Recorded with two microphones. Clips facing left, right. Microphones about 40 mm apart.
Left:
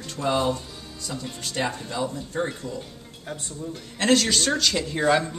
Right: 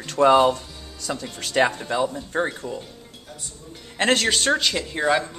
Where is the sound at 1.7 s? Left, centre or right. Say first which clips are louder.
Right 4 dB; right.